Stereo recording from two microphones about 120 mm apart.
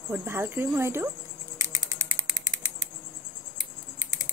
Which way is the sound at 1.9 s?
35° right (ahead or behind).